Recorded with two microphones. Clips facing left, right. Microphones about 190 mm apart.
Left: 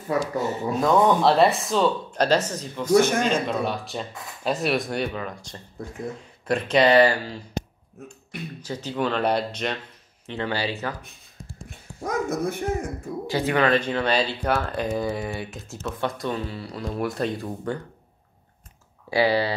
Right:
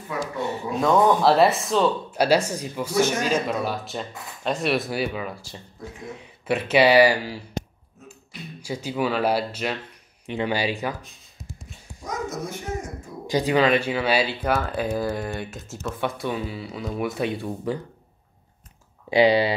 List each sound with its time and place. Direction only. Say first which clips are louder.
0.4 s speech: left 1 dB; centre (ahead or behind)
8.5 s speech: right 2 dB; 10° right (ahead or behind)
12.0 s dog: left 5 dB; 60° left (ahead or behind)
13.3 s speech: right 2 dB; 15° right (ahead or behind)
19.0 s speech: right 3 dB; 20° right (ahead or behind)